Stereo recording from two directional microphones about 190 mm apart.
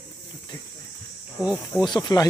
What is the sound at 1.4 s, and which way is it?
Speech, 5° right (ahead or behind).